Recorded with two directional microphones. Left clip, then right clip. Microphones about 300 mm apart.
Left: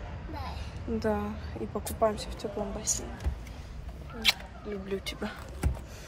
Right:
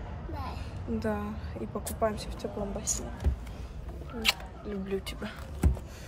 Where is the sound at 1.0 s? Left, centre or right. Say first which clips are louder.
Left 3 dB; centre.